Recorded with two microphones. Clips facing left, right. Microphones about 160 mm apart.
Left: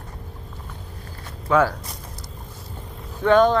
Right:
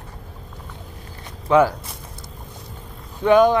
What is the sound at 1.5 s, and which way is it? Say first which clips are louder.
Speech: right 3 dB; 15° right (ahead or behind).